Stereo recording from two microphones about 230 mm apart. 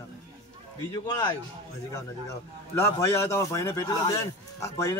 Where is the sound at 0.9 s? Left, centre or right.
Centre.